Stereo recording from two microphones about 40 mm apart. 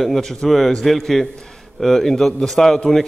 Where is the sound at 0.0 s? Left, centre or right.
Centre.